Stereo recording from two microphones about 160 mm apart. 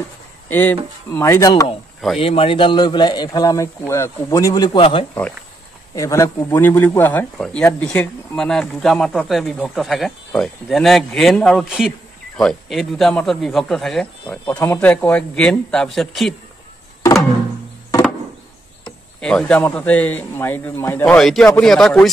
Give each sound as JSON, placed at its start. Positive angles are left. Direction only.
{"t": 0.5, "sound": "speech", "side_deg": 10}
{"t": 2.1, "sound": "a man's voice", "side_deg": 35}
{"t": 5.9, "sound": "a man's voice", "side_deg": 20}
{"t": 18.9, "sound": "speech", "side_deg": 5}
{"t": 21.0, "sound": "a man's voice", "side_deg": 5}